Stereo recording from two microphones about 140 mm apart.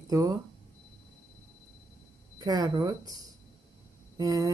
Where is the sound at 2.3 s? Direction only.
30° right (ahead or behind).